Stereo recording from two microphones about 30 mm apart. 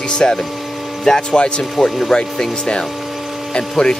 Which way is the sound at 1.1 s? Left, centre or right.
Centre.